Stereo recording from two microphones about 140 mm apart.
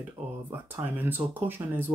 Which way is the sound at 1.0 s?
15° right (ahead or behind).